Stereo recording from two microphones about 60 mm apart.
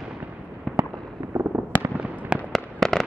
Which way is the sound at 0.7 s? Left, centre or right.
Centre.